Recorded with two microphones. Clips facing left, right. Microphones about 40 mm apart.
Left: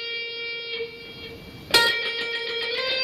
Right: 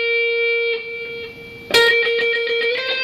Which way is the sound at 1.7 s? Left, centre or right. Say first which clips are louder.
Right 7 dB; right.